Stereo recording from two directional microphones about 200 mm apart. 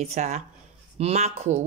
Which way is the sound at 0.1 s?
35° right (ahead or behind).